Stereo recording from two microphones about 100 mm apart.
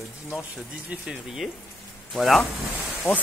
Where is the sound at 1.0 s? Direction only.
5° right (ahead or behind).